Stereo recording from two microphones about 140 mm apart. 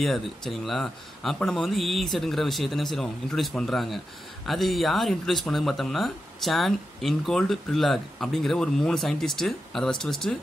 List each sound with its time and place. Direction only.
0.0 s speech: centre (ahead or behind)